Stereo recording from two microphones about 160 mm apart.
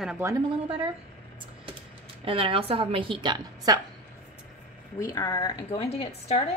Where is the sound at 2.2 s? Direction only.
35° right (ahead or behind).